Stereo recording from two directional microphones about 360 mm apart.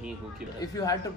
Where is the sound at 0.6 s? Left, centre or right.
Centre.